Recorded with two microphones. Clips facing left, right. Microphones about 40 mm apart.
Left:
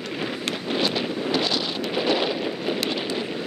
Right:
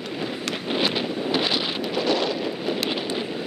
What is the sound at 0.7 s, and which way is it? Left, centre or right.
Wind noise, centre.